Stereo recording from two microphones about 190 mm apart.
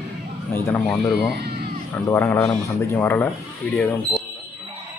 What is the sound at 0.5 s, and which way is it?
Speech, 10° left (ahead or behind).